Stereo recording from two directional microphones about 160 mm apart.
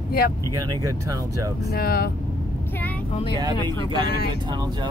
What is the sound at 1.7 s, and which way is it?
Speech, 75° left (ahead or behind).